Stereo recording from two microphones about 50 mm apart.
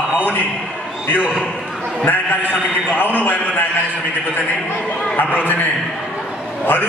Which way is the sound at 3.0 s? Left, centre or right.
Left.